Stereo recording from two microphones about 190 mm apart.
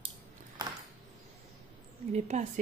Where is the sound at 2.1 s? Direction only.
35° right (ahead or behind).